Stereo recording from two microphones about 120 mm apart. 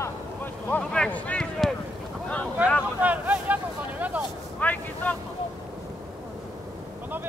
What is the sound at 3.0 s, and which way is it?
Boat, 10° right (ahead or behind).